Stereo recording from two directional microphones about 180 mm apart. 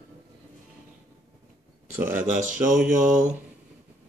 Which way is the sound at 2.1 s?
45° right (ahead or behind).